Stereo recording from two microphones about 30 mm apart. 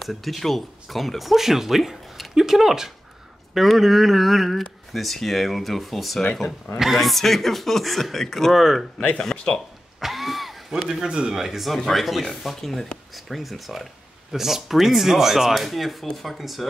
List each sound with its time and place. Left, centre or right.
0.0 s speech: centre
9.9 s a sound: centre
10.7 s speech: centre
11.1 s speech: right
11.3 s speech: centre
11.7 s speech: centre
12.5 s speech: centre
13.1 s speech: centre